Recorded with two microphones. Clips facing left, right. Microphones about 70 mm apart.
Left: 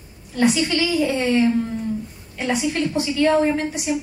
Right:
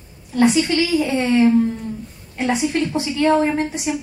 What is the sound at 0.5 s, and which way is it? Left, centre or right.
A woman's voice, right.